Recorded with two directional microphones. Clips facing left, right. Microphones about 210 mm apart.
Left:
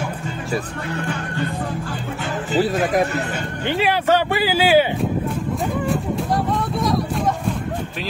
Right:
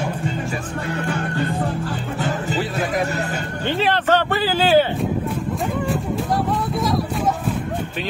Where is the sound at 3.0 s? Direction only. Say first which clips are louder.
Left 1 dB; 40° right (ahead or behind).